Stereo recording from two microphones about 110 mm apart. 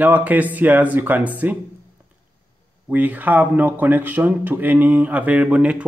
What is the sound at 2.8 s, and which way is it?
Speech, 15° right (ahead or behind).